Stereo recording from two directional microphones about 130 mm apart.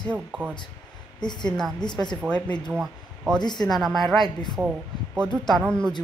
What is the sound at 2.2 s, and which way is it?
Speech, 10° left (ahead or behind).